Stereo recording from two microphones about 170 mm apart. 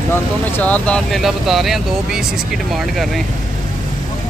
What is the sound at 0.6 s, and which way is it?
Speech, 5° left (ahead or behind).